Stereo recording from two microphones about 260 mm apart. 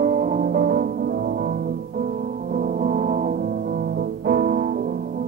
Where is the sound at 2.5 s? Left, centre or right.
Right.